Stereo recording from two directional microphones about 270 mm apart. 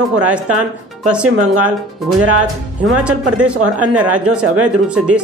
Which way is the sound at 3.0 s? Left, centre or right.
Centre.